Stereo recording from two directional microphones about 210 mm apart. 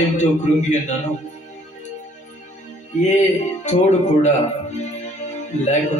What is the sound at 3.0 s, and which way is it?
A man's voice, 35° left (ahead or behind).